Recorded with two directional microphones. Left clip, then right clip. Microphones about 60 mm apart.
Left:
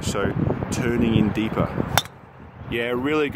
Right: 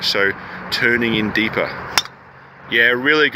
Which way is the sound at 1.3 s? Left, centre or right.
Left.